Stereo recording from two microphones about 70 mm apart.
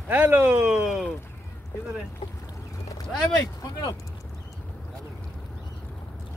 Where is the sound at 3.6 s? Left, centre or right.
Left.